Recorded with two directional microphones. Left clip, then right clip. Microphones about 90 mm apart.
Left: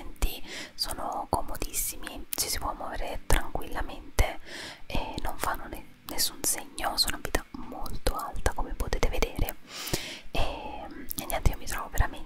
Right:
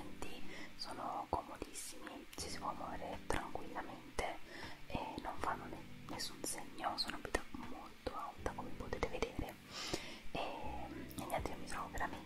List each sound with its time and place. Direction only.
0.2 s whispering: 35° left (ahead or behind)